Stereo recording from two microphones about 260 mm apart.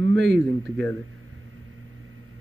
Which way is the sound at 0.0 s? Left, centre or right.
Right.